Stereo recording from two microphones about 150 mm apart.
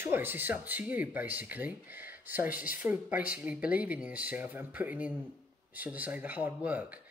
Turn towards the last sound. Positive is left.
turn(degrees=-10)  # may be behind; listen again after turning